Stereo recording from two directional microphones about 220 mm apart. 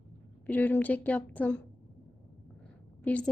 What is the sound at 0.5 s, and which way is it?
A woman's voice, 10° left (ahead or behind).